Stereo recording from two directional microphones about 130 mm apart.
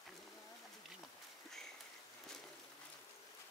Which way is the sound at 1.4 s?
5° left (ahead or behind).